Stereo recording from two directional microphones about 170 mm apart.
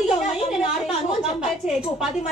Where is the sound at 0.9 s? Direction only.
40° left (ahead or behind).